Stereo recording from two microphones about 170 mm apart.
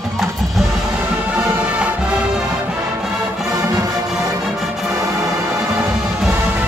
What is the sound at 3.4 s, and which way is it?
Music, 20° right (ahead or behind).